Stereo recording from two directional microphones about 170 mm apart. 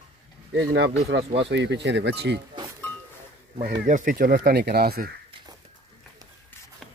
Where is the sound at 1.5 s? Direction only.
90° right.